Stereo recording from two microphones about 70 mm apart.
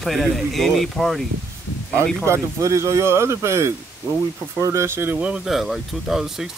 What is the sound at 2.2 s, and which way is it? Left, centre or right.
Speech, right.